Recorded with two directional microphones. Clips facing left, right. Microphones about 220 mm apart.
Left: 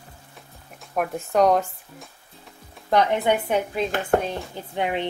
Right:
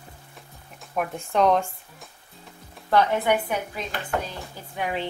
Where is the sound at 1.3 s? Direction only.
40° left (ahead or behind).